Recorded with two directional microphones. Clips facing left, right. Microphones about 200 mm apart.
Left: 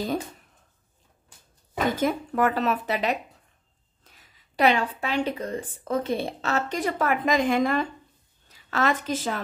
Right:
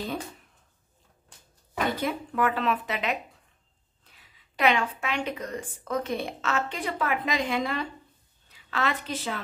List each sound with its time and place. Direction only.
1.9 s a woman's voice: 45° left (ahead or behind)